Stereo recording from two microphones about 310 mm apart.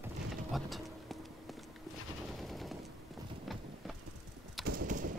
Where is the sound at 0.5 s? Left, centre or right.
Centre.